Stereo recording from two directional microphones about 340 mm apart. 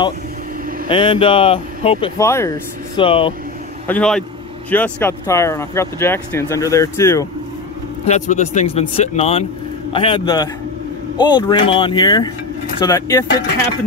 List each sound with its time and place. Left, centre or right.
0.8 s speech: centre
3.8 s a man's voice: centre
8.0 s speech: centre